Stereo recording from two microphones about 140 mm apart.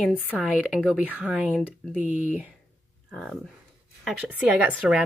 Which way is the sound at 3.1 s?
5° left (ahead or behind).